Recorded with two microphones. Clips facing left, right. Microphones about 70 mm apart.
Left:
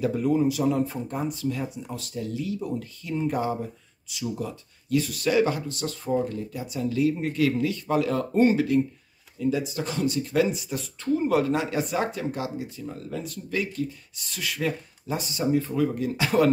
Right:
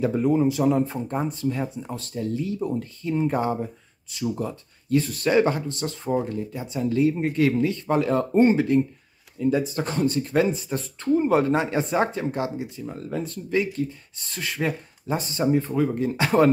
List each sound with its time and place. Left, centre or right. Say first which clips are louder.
0.0 s speech: right 2 dB; right